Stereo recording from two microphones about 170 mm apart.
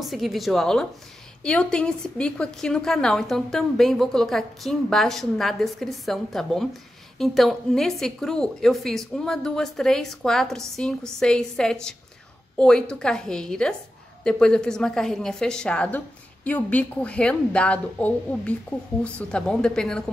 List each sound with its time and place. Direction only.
0.0 s a woman's voice: centre (ahead or behind)